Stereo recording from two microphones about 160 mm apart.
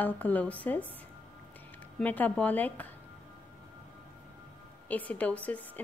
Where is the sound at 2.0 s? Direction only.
10° left (ahead or behind).